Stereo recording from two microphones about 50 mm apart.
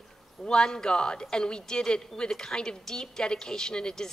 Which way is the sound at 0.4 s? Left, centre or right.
Centre.